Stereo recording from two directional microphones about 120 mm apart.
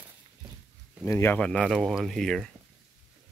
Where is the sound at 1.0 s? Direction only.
20° left (ahead or behind).